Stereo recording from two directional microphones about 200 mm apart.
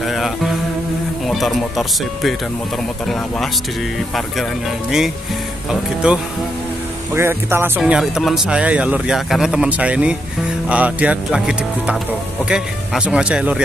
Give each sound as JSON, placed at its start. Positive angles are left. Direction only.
{"t": 0.0, "sound": "music", "side_deg": 0}
{"t": 1.2, "sound": "speech", "side_deg": 0}
{"t": 6.0, "sound": "speech", "side_deg": -5}